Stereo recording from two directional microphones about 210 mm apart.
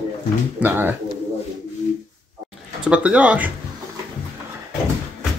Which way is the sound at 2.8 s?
5° right (ahead or behind).